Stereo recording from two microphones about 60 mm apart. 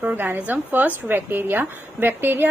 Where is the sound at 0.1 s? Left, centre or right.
Right.